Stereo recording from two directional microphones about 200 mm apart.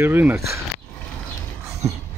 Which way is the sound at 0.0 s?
10° right (ahead or behind).